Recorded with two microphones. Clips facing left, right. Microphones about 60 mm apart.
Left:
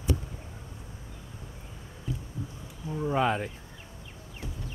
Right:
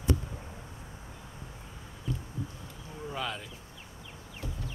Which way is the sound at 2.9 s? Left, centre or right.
Left.